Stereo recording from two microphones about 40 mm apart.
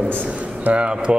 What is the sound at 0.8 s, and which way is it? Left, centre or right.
Speech, right.